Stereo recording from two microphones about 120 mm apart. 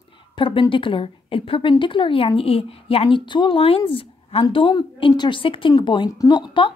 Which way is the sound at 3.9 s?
50° left (ahead or behind).